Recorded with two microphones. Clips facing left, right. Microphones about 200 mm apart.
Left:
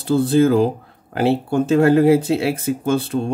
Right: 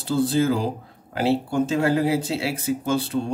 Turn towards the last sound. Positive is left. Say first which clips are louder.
# left 4 dB
turn(degrees=55)  # may be behind; listen again after turning